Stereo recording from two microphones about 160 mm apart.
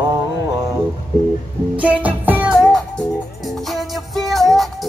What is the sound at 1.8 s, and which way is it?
Music, 10° right (ahead or behind).